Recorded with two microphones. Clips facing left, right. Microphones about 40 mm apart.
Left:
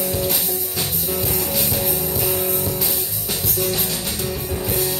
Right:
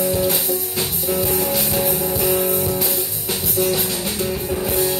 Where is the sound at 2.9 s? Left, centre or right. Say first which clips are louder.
Right 2 dB; centre.